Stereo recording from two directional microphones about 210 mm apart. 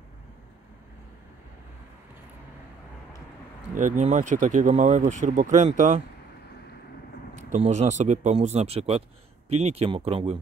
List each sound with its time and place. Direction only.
3.7 s speech: 35° right (ahead or behind)
7.5 s speech: 35° right (ahead or behind)